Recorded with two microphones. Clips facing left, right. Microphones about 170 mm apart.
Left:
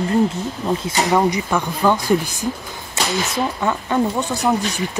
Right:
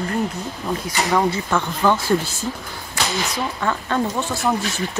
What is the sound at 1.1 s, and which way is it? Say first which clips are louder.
Speech: left 2 dB; 15° left (ahead or behind).